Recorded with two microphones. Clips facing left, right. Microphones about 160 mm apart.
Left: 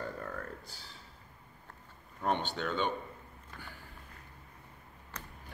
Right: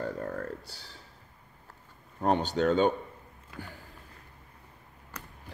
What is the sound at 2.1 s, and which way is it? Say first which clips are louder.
Speech: right 7 dB; 35° right (ahead or behind).